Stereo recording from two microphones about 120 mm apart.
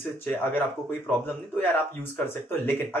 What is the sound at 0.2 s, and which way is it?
Speech, 15° left (ahead or behind).